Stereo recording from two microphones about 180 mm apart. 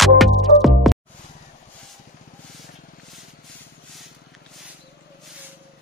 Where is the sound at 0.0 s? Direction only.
Centre (ahead or behind).